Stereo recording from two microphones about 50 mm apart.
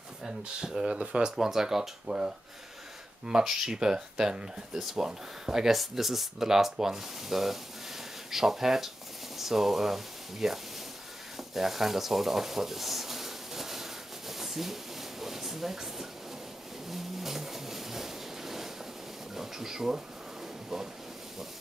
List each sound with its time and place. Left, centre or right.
0.4 s speech: centre
14.3 s a sound: centre
20.7 s speech: centre